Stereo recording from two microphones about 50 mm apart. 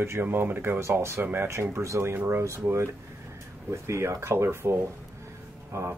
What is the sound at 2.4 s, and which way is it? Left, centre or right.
Speech, right.